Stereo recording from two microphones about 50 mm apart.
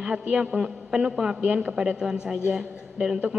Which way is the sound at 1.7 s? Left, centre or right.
Centre.